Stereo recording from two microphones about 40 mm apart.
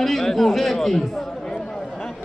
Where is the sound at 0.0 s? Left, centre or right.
Centre.